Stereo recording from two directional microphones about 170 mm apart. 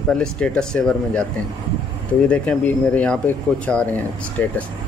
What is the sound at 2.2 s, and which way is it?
Speech, 10° left (ahead or behind).